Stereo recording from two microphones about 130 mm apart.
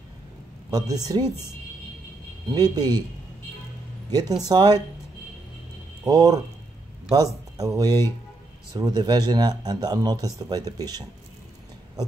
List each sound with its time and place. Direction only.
0.7 s a woman's voice: 30° right (ahead or behind)
2.5 s a woman's voice: 30° right (ahead or behind)
4.5 s speech: 30° right (ahead or behind)
6.0 s speech: 30° right (ahead or behind)